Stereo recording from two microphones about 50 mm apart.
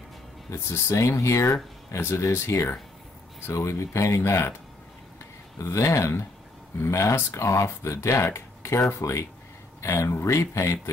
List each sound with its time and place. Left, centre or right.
0.5 s speech: left
2.0 s speech: left
3.4 s speech: left
5.6 s speech: left